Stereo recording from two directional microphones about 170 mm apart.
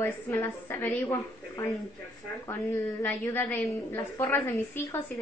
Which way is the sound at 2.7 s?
15° left (ahead or behind).